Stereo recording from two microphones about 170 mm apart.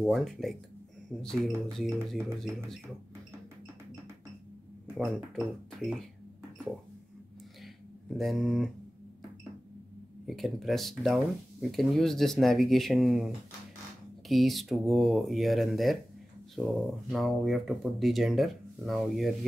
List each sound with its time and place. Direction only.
0.0 s speech: centre (ahead or behind)
4.9 s speech: centre (ahead or behind)
7.6 s a sound: centre (ahead or behind)
10.2 s speech: centre (ahead or behind)